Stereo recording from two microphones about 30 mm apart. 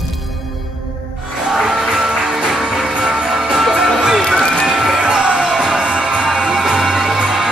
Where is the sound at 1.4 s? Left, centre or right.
Centre.